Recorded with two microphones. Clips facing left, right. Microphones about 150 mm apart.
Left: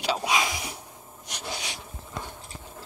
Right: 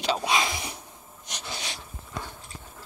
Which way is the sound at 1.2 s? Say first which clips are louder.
Left 2 dB; 10° left (ahead or behind).